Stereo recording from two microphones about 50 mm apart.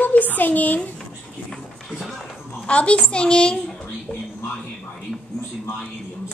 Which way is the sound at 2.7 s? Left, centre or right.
Left.